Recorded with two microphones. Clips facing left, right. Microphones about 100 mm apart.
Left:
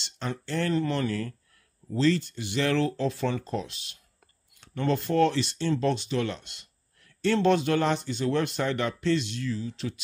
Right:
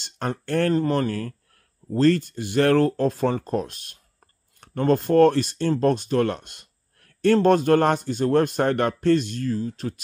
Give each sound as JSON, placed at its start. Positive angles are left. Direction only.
{"t": 0.0, "sound": "speech", "side_deg": -50}